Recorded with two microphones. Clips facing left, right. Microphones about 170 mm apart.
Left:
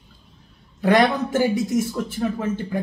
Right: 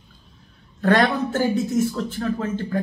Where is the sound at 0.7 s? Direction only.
10° left (ahead or behind).